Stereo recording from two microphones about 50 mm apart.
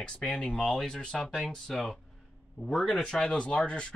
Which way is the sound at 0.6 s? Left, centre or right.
Centre.